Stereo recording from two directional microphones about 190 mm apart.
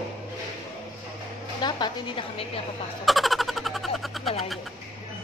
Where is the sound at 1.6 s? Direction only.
25° left (ahead or behind).